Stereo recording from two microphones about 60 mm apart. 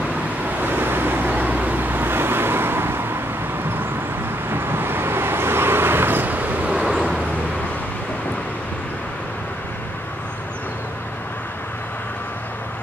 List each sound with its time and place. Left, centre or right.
0.6 s vehicle: right
4.5 s vehicle: right; by 7.2 s centre